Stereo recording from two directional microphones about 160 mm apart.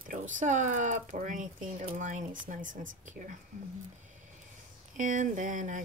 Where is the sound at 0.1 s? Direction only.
50° right (ahead or behind).